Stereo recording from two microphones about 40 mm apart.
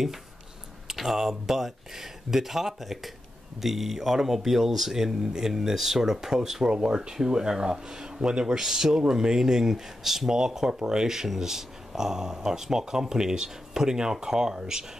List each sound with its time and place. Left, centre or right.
0.8 s speech: centre